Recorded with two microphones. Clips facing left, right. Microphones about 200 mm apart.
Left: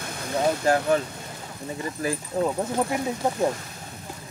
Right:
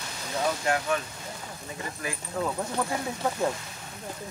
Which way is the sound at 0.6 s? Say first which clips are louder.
Left 8 dB; 35° left (ahead or behind).